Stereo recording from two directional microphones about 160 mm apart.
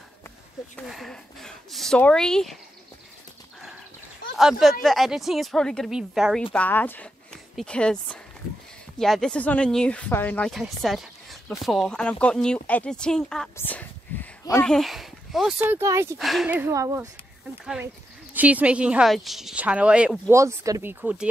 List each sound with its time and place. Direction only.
0.8 s speech: centre (ahead or behind)
4.4 s speech: centre (ahead or behind)
6.5 s speech: 10° left (ahead or behind)
13.6 s a sound: 10° left (ahead or behind)
14.6 s speech: centre (ahead or behind)
15.6 s a woman's voice: 15° right (ahead or behind)
16.2 s speech: centre (ahead or behind)
16.4 s a woman's voice: 15° right (ahead or behind)
18.3 s a woman's voice: 10° right (ahead or behind)
20.3 s a woman's voice: 20° right (ahead or behind)